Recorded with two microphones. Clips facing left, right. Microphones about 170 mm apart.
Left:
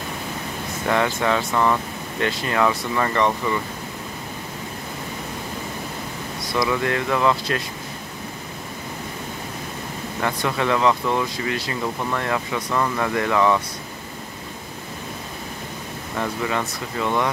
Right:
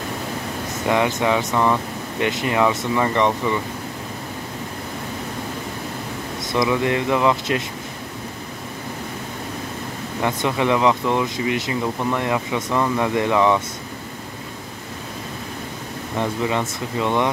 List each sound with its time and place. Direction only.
0.8 s speech: 15° right (ahead or behind)
6.4 s speech: 20° right (ahead or behind)
10.2 s speech: 15° right (ahead or behind)
16.2 s speech: 20° right (ahead or behind)